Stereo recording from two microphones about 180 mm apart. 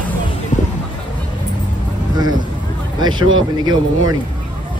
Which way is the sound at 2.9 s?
25° right (ahead or behind).